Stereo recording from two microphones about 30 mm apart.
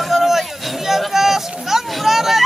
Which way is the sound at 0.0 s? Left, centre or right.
Centre.